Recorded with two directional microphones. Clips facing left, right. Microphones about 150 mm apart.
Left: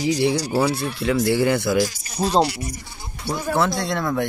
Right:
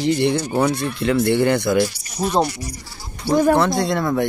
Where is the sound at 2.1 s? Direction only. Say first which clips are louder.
Even; 30° left (ahead or behind).